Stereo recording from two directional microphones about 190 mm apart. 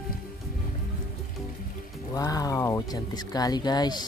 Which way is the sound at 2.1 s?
20° left (ahead or behind).